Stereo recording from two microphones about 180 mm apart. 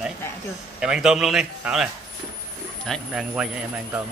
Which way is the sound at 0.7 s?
5° right (ahead or behind).